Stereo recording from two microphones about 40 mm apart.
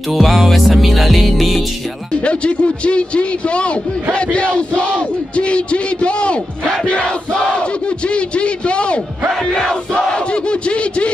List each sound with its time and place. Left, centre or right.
0.1 s music: centre
2.2 s a sound: left
6.9 s crowd: left
8.1 s a sound: left
9.5 s battle cry: centre
10.1 s battle cry: left